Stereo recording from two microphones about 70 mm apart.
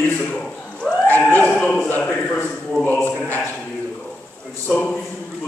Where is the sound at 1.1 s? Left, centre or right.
Left.